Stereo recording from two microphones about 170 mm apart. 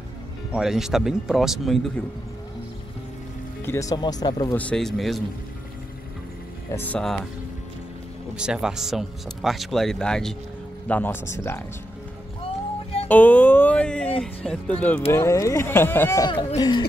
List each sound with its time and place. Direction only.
0.5 s speech: 5° right (ahead or behind)
3.6 s speech: 15° left (ahead or behind)
4.6 s speech: 5° left (ahead or behind)
6.7 s speech: 10° left (ahead or behind)
8.4 s speech: 5° right (ahead or behind); by 11.6 s 15° left (ahead or behind)
13.1 s speech: 10° left (ahead or behind)
16.3 s speech: 25° left (ahead or behind)